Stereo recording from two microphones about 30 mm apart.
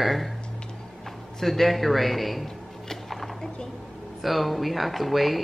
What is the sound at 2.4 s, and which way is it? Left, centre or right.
Music, centre.